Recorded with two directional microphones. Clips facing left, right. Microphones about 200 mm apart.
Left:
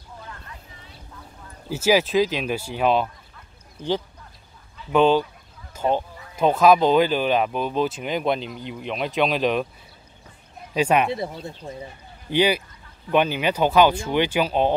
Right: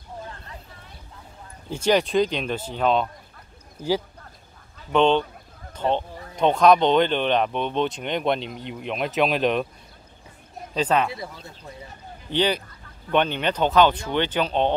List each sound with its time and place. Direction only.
1.7 s speech: 5° left (ahead or behind)
3.8 s speech: 5° right (ahead or behind)
4.9 s speech: 5° left (ahead or behind)
5.7 s a sound: 10° left (ahead or behind)
6.3 s speech: 5° left (ahead or behind)
10.7 s speech: 10° left (ahead or behind)
11.1 s speech: 25° left (ahead or behind)
12.3 s speech: 10° left (ahead or behind)